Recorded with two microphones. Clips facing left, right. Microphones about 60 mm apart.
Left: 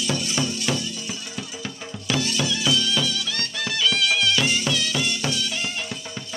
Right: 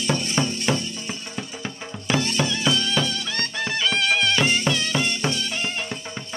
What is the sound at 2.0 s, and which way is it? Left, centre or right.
Music, right.